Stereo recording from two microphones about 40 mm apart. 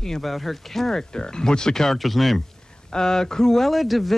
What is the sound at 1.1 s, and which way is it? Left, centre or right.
Speech, centre.